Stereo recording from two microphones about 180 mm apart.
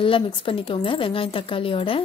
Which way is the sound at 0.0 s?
30° left (ahead or behind).